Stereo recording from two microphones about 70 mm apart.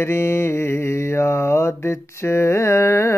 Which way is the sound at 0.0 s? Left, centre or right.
Left.